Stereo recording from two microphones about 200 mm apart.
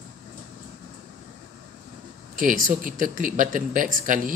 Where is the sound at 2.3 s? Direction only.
40° right (ahead or behind).